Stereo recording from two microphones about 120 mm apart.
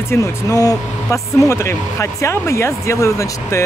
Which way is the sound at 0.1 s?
25° left (ahead or behind).